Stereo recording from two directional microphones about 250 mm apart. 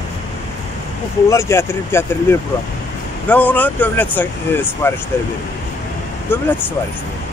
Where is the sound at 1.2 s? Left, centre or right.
Centre.